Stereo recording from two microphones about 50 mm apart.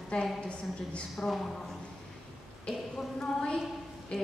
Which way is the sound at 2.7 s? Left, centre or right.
Centre.